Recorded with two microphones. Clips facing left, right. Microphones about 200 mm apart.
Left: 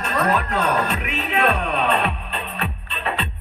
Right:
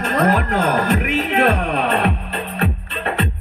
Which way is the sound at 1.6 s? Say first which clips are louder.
Right 3 dB; 70° right (ahead or behind).